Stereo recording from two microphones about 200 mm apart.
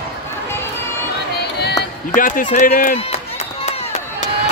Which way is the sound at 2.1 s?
40° left (ahead or behind).